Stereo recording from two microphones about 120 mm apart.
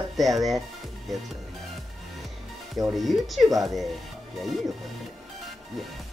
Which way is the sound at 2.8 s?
Centre (ahead or behind).